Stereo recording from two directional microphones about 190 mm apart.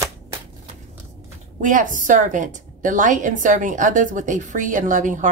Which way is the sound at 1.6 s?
45° right (ahead or behind).